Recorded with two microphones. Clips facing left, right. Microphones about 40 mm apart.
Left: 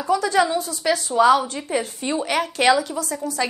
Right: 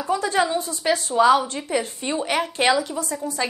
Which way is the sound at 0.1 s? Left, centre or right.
Right.